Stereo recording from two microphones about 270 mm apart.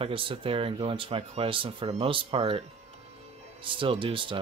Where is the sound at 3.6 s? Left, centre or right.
Centre.